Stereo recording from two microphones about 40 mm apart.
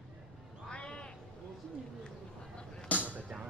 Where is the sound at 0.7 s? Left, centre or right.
Left.